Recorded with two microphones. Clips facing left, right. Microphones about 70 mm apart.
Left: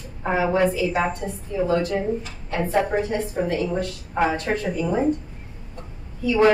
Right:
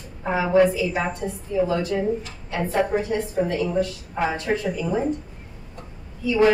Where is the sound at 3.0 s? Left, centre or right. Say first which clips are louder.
Right 1 dB; left.